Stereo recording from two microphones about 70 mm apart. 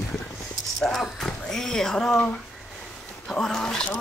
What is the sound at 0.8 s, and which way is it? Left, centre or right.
Speech, centre.